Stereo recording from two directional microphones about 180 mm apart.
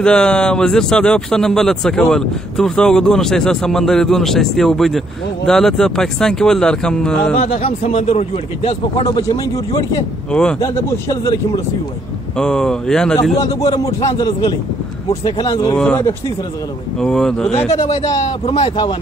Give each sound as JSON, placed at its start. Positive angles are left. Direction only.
{"t": 0.0, "sound": "speech", "side_deg": 5}
{"t": 7.5, "sound": "speech", "side_deg": 35}
{"t": 9.0, "sound": "speech", "side_deg": 25}
{"t": 12.4, "sound": "speech", "side_deg": 5}
{"t": 13.7, "sound": "speech", "side_deg": 20}
{"t": 15.8, "sound": "speech", "side_deg": 10}
{"t": 18.5, "sound": "speech", "side_deg": 25}